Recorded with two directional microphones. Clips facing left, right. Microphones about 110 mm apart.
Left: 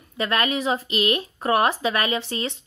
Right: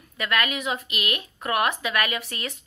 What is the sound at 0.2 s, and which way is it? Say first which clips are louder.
A woman's voice: left 3 dB; 30° left (ahead or behind).